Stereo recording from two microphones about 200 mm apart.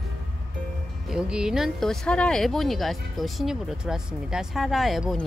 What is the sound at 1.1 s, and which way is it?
Speech, 5° right (ahead or behind).